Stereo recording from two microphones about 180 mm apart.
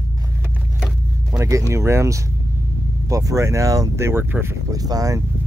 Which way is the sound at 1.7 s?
15° right (ahead or behind).